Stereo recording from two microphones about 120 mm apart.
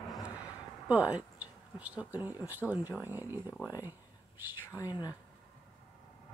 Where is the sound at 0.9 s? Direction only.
10° right (ahead or behind).